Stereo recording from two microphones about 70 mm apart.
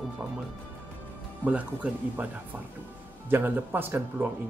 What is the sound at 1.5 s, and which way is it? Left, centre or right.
A man's voice, right.